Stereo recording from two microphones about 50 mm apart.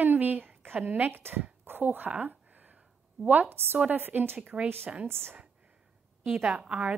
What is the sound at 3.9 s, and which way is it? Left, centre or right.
Speech, right.